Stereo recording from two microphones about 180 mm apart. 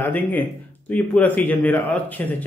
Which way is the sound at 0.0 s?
10° left (ahead or behind).